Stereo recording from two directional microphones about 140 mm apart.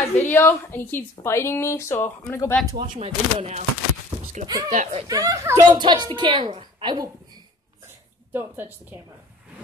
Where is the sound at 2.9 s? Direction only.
45° right (ahead or behind).